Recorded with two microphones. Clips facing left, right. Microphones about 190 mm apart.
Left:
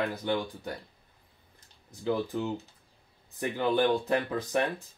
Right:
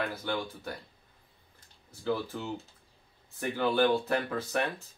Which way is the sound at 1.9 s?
15° left (ahead or behind).